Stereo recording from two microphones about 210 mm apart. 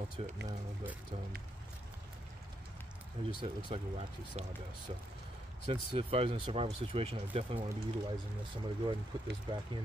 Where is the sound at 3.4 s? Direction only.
25° right (ahead or behind).